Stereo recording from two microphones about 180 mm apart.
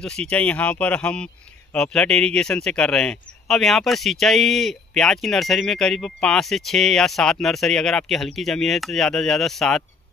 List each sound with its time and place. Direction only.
0.3 s speech: 5° left (ahead or behind)